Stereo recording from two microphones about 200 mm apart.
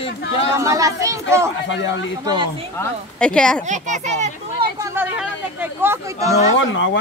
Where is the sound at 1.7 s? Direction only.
65° left (ahead or behind).